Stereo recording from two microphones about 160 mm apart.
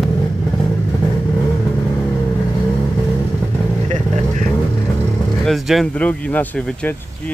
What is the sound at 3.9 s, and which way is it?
Vehicle, 45° right (ahead or behind).